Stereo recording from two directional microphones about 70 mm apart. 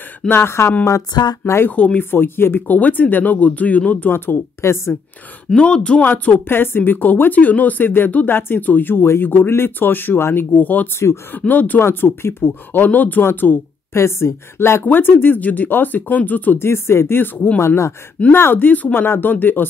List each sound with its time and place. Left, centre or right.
0.3 s speech: left
5.5 s speech: centre
11.8 s speech: left
13.9 s speech: left